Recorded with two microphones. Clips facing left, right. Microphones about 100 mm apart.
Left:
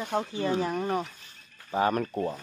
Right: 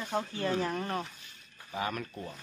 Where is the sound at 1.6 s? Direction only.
40° left (ahead or behind).